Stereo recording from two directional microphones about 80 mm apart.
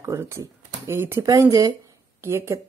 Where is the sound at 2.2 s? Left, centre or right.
Right.